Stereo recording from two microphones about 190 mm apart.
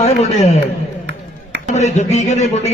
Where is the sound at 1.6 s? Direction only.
40° left (ahead or behind).